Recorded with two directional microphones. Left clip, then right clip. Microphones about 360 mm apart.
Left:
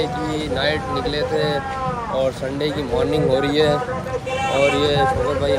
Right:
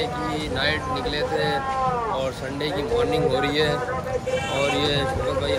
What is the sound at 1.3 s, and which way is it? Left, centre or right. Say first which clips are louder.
Speech: left 2 dB; centre.